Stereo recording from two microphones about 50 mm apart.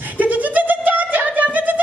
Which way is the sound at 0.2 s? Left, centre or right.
Right.